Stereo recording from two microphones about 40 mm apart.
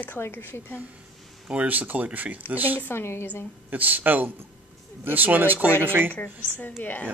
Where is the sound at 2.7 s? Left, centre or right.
Left.